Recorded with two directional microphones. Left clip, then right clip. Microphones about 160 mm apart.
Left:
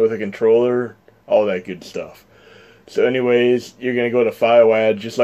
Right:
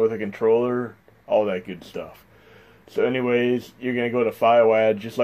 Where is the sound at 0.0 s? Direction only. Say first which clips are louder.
Left 4 dB; 20° left (ahead or behind).